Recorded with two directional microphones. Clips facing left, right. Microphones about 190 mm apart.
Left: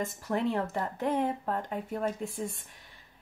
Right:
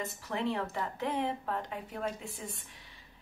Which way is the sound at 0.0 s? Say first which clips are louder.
Left 4 dB; 45° left (ahead or behind).